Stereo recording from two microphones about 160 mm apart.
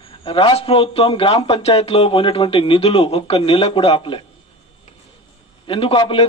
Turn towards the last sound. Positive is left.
turn(degrees=35)  # may be behind; listen again after turning